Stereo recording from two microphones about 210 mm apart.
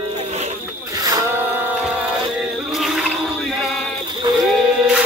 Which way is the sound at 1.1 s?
15° right (ahead or behind).